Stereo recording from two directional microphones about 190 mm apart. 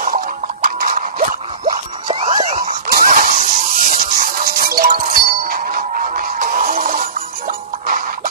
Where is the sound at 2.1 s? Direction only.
30° right (ahead or behind).